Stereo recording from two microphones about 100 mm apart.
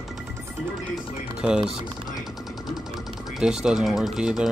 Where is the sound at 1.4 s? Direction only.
10° right (ahead or behind).